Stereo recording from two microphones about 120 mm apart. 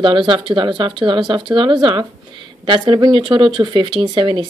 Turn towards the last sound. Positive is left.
turn(degrees=-45)  # may be behind; listen again after turning